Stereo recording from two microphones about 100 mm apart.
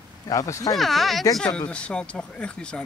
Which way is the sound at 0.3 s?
35° left (ahead or behind).